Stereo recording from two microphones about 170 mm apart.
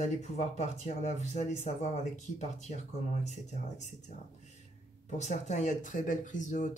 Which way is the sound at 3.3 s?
45° left (ahead or behind).